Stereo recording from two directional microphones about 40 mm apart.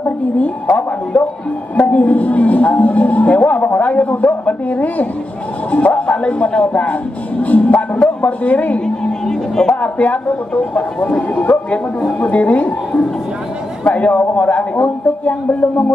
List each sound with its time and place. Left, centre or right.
0.7 s speech: left
1.8 s a woman's voice: left
8.8 s music: centre
9.8 s speech: left
13.8 s speech: left